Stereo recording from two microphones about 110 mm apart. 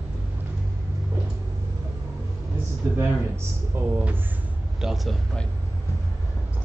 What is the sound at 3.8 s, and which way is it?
Speech, 20° right (ahead or behind).